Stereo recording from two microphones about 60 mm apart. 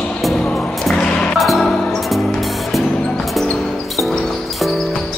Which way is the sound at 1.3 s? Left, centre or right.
Centre.